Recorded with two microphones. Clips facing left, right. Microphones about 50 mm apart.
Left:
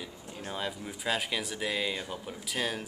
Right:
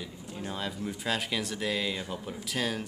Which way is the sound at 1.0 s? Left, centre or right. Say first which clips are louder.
Left 1 dB; centre.